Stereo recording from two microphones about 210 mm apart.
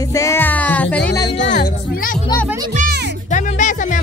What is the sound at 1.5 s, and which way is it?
Music, 40° left (ahead or behind).